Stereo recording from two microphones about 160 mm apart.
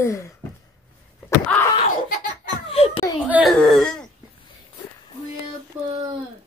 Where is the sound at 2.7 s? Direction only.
40° left (ahead or behind).